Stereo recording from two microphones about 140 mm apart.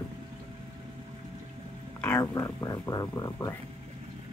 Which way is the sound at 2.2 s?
20° left (ahead or behind).